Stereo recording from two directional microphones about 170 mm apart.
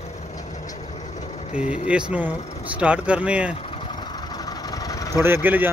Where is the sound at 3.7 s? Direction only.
30° left (ahead or behind).